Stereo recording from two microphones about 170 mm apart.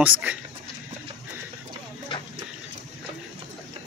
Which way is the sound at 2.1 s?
30° left (ahead or behind).